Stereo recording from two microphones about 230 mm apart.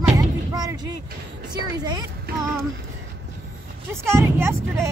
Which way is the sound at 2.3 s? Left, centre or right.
Right.